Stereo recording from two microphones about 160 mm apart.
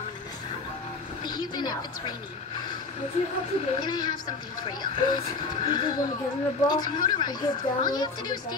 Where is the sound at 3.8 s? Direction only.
25° left (ahead or behind).